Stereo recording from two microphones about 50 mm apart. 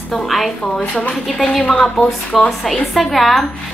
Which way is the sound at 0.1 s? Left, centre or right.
Centre.